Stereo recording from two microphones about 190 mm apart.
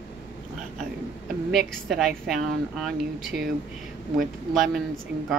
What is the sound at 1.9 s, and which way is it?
Speech, centre (ahead or behind).